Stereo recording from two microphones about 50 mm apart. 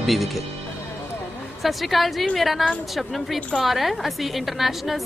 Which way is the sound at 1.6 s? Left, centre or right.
Centre.